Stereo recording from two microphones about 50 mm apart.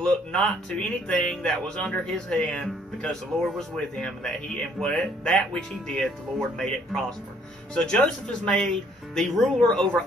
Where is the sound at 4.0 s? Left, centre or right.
Centre.